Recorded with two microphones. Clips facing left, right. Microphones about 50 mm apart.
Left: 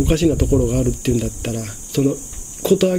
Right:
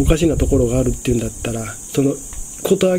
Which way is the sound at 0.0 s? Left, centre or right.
Centre.